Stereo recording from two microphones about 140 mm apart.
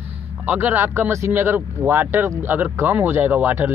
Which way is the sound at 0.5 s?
10° right (ahead or behind).